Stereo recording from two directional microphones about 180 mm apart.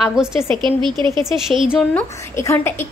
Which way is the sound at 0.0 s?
5° right (ahead or behind).